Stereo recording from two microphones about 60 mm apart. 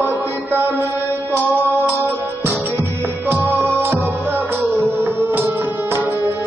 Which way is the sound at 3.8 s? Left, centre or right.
Right.